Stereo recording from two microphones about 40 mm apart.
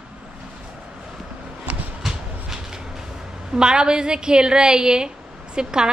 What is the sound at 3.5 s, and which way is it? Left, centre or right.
A woman's voice, centre.